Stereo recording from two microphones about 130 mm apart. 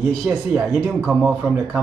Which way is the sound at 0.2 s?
20° right (ahead or behind).